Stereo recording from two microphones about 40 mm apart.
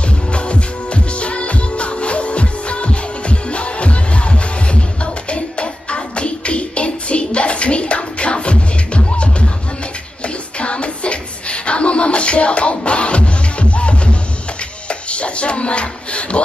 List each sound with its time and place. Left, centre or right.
0.3 s music: left
10.2 s a sound: left
14.9 s music: left